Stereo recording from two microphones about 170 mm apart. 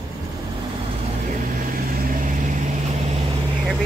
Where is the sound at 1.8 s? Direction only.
60° right (ahead or behind).